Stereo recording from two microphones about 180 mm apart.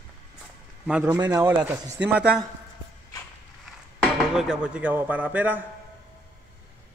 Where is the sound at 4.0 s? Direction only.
Centre (ahead or behind).